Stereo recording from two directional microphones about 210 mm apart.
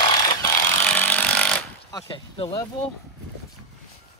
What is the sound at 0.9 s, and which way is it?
Chainsaw, 10° left (ahead or behind).